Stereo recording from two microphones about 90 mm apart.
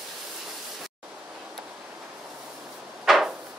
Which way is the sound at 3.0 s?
Centre (ahead or behind).